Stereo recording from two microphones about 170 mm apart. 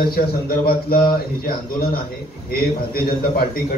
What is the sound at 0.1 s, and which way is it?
Speech, 65° left (ahead or behind).